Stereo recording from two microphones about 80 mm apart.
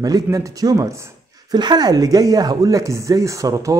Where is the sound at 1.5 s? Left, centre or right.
Right.